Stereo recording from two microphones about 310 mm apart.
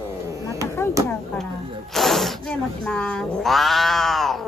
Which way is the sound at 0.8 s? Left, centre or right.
Centre.